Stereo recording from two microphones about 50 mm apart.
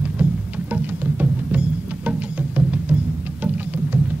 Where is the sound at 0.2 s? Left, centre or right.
Right.